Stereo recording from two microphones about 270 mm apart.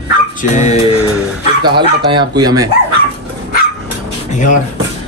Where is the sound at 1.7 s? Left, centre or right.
Centre.